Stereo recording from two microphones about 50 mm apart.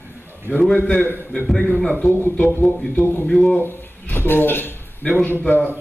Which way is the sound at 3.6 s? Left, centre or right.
Left.